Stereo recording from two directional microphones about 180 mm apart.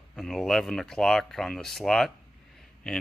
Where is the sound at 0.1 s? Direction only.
Centre (ahead or behind).